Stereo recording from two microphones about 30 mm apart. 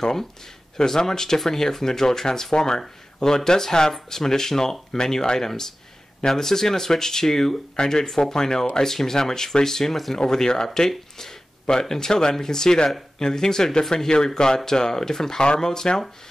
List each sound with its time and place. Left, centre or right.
0.7 s speech: centre